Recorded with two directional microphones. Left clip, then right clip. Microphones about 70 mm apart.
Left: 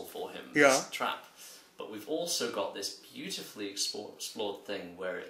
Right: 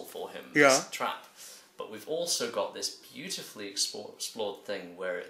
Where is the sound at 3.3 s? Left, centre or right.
Right.